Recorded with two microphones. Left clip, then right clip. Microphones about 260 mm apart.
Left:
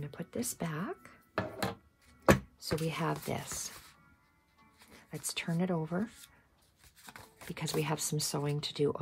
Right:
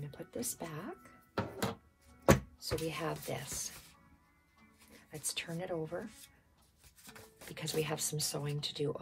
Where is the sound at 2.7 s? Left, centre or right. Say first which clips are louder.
Left 3 dB; left.